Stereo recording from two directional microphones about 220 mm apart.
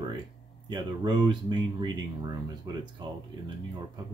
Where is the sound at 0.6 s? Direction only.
20° right (ahead or behind).